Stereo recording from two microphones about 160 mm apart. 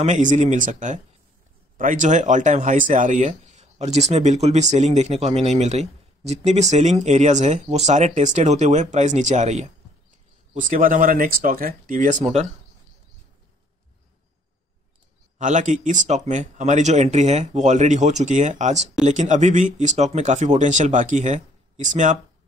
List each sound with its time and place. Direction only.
0.0 s speech: 50° right (ahead or behind)
15.3 s speech: 50° right (ahead or behind)